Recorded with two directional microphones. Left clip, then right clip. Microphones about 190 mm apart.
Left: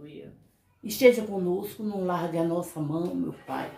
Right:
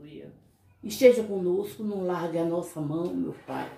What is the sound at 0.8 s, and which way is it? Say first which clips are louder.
Speech: right 1 dB; 25° left (ahead or behind).